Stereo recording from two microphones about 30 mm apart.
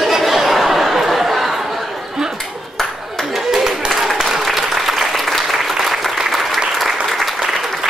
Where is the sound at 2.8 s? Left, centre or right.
Centre.